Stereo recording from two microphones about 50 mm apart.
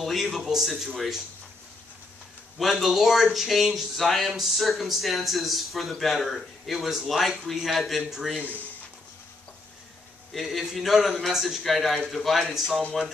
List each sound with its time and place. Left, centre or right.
0.0 s a sound: centre
0.5 s speech: centre
2.6 s speech: centre
8.4 s speech: right
10.3 s speech: centre